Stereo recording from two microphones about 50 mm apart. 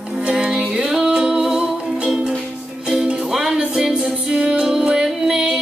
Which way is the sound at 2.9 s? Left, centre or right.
Centre.